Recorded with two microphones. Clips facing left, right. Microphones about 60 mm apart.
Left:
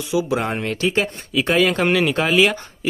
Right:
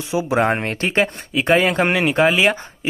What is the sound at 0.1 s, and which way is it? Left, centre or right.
Speech, right.